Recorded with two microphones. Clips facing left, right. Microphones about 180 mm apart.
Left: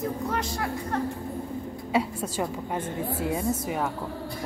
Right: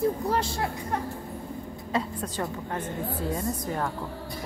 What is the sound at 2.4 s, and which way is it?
A woman's voice, 20° left (ahead or behind).